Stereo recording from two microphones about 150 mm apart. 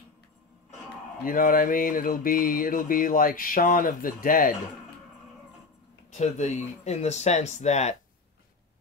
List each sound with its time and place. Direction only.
1.2 s mantra: 70° left (ahead or behind)
6.1 s speech: 50° left (ahead or behind)